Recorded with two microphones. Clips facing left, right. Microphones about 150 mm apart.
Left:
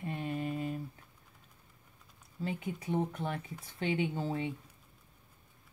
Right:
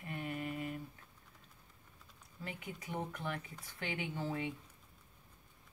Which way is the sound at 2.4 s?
30° left (ahead or behind).